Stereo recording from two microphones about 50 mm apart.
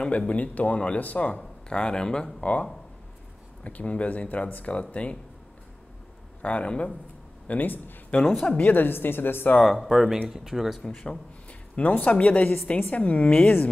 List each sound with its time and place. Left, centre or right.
0.0 s speech: left
1.7 s speech: centre
2.4 s speech: left
6.4 s speech: left
7.4 s a woman's voice: left
8.1 s a woman's voice: left
8.8 s speech: left
9.6 s speech: centre
10.9 s a woman's voice: left